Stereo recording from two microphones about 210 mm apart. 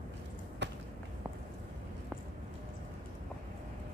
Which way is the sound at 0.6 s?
55° right (ahead or behind).